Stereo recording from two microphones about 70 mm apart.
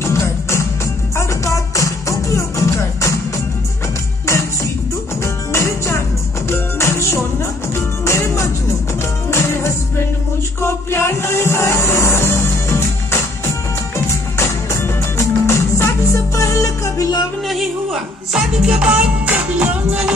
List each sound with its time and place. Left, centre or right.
0.0 s music: left
5.2 s music: left
17.5 s music: centre